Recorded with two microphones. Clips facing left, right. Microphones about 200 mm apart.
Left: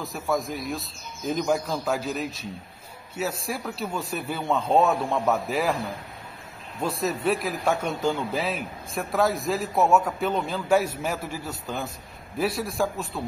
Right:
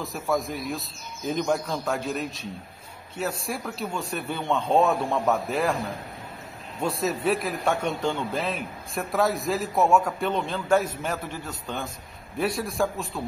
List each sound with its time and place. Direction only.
0.0 s a man's voice: centre (ahead or behind)
6.8 s a man's voice: centre (ahead or behind)